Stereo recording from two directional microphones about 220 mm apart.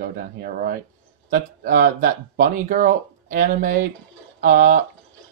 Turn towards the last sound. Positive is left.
turn(degrees=-35)  # may be behind; listen again after turning